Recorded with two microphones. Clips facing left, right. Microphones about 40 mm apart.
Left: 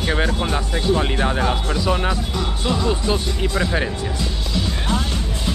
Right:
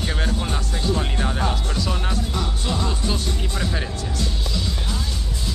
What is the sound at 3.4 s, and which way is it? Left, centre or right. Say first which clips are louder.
Speech: left 6 dB; left.